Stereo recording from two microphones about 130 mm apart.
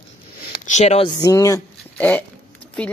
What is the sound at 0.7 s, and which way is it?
Speech, 60° left (ahead or behind).